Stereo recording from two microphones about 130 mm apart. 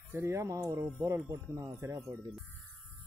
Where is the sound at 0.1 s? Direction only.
20° right (ahead or behind).